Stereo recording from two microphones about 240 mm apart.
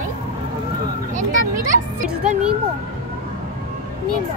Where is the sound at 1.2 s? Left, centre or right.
Right.